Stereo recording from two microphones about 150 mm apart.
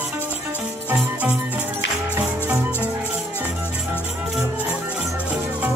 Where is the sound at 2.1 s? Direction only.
15° right (ahead or behind).